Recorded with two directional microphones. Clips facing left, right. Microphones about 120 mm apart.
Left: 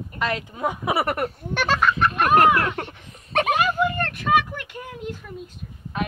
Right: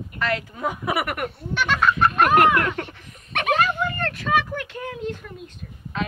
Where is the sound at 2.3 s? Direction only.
25° left (ahead or behind).